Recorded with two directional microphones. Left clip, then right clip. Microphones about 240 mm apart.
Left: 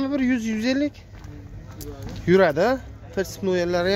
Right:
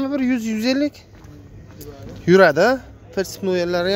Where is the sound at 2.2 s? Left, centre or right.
Right.